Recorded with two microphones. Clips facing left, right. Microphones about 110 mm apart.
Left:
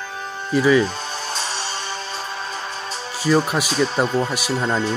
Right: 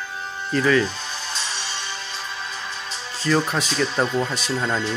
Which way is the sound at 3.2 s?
10° left (ahead or behind).